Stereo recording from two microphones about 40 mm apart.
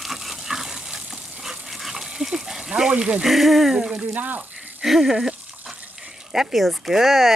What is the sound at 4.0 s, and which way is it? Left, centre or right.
Speech, right.